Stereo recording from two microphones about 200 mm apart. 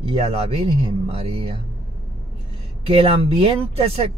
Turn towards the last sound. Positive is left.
turn(degrees=-30)  # may be behind; listen again after turning